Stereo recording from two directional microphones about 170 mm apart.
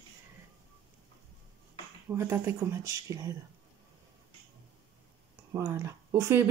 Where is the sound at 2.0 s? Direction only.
15° right (ahead or behind).